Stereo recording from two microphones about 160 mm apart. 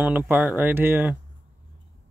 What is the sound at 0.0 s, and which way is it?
Speech, 10° right (ahead or behind).